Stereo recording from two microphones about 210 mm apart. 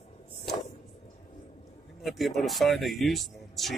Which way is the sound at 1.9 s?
Centre (ahead or behind).